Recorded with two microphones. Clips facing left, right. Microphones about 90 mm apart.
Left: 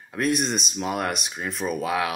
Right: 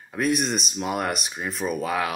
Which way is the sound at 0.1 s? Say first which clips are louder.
Even; centre (ahead or behind).